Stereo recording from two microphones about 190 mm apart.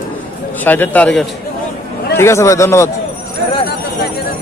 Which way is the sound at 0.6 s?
10° left (ahead or behind).